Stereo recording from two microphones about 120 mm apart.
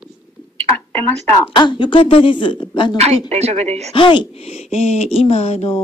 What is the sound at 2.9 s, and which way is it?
Speech, 65° right (ahead or behind).